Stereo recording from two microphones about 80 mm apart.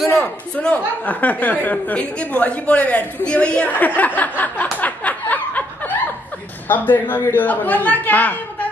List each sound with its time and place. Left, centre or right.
0.1 s speech: centre
4.7 s snicker: centre
6.7 s speech: left